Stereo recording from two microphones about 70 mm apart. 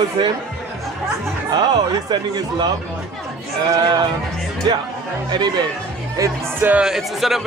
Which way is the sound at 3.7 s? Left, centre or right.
Right.